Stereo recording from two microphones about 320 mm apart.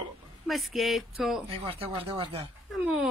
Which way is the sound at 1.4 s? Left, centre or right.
Centre.